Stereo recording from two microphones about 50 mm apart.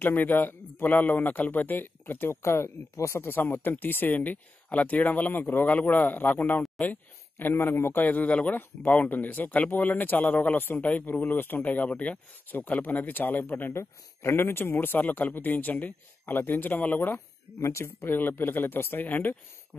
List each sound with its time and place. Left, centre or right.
0.0 s speech: left
2.4 s speech: left
3.2 s speech: left
7.7 s a man's voice: left
8.0 s speech: left
8.5 s speech: left
17.6 s speech: left